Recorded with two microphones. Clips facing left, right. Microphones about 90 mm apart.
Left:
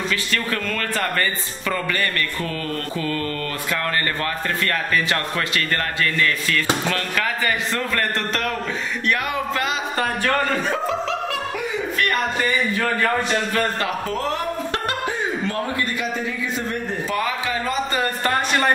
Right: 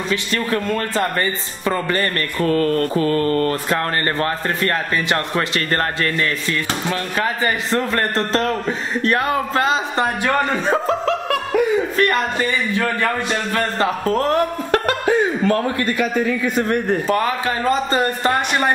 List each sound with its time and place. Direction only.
0.1 s a man's voice: 25° right (ahead or behind)
10.7 s snicker: 45° right (ahead or behind)
13.7 s music: 40° right (ahead or behind)
16.0 s a man's voice: 55° right (ahead or behind)